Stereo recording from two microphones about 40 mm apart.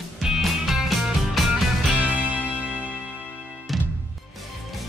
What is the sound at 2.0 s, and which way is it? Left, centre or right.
Music, right.